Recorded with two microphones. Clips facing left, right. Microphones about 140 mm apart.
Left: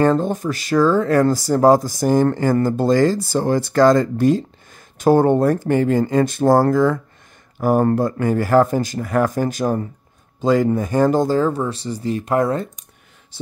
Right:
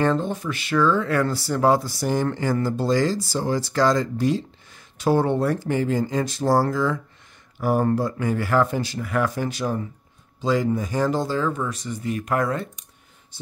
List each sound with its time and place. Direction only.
0.0 s speech: 45° left (ahead or behind)